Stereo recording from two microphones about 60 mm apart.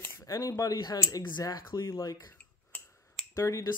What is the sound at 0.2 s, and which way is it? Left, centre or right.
Speech, left.